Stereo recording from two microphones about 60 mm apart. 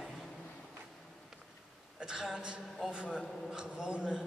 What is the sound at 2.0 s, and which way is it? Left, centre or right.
A woman's voice, centre.